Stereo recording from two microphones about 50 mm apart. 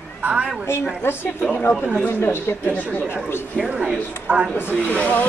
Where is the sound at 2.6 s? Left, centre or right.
Left.